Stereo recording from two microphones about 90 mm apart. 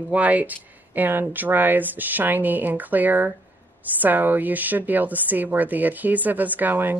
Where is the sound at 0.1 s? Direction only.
15° right (ahead or behind).